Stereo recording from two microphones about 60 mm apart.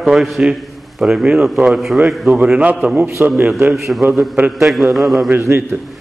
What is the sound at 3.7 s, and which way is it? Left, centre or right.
A man's voice, centre.